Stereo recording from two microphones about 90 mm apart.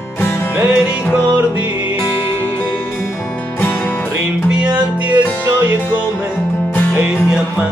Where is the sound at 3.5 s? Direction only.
20° left (ahead or behind).